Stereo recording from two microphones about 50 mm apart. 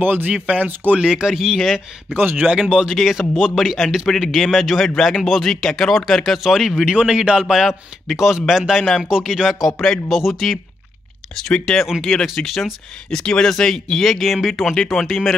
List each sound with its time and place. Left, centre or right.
0.0 s speech: right
0.9 s a man's voice: centre
1.6 s speech: centre
2.1 s speech: right
2.7 s a man's voice: centre
3.0 s speech: centre
6.4 s a man's voice: centre
11.6 s speech: centre
12.4 s speech: centre
13.1 s speech: centre